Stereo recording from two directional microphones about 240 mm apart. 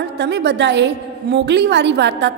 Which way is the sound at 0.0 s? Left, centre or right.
Right.